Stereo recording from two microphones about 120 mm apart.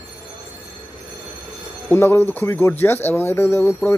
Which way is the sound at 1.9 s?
20° left (ahead or behind).